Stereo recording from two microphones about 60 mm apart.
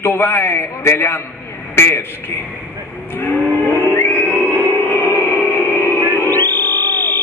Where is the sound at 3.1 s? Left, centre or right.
Left.